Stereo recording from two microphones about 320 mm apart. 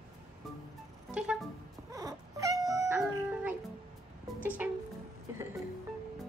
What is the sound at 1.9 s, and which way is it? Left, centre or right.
Cat, centre.